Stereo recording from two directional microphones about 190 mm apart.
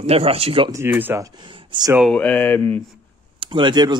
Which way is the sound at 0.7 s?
10° right (ahead or behind).